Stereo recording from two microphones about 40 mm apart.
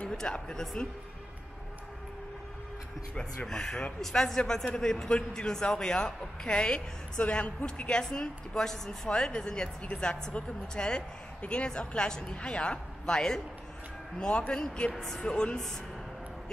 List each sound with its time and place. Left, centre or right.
0.1 s speech: centre
3.4 s a man's voice: centre
14.5 s a man's voice: left
15.0 s speech: centre
15.2 s a man's voice: left